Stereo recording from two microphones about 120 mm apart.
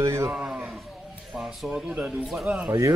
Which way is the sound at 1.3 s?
5° right (ahead or behind).